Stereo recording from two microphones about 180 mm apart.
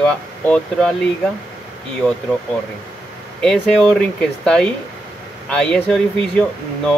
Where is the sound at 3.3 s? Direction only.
5° left (ahead or behind).